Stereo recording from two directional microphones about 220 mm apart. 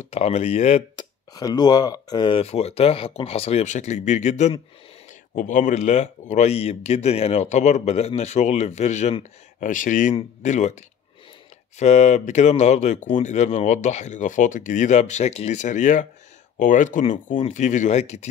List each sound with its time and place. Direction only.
0.0 s speech: 30° left (ahead or behind)
1.3 s speech: 15° left (ahead or behind); by 10.8 s 30° left (ahead or behind)
11.8 s speech: 30° left (ahead or behind)